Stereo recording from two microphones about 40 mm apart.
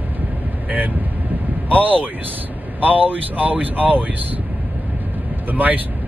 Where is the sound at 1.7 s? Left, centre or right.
Right.